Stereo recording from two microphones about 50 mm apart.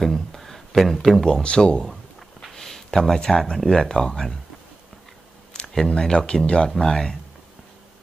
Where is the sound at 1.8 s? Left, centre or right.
Centre.